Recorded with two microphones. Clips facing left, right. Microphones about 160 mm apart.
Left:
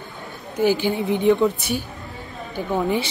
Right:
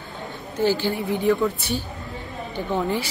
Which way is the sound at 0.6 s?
15° left (ahead or behind).